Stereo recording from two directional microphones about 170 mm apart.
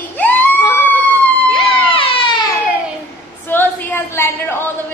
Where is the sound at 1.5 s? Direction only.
30° left (ahead or behind).